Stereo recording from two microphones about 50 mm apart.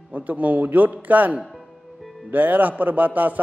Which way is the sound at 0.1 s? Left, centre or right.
Right.